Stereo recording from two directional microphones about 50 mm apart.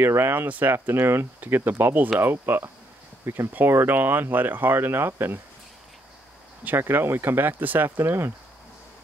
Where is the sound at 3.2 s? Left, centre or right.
Right.